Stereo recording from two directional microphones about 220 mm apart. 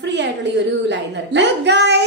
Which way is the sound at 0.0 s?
55° right (ahead or behind).